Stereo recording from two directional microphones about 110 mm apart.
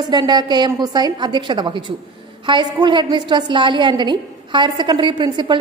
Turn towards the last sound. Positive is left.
turn(degrees=-45)  # may be behind; listen again after turning